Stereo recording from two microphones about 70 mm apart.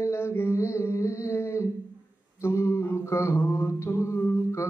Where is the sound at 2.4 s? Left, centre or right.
Left.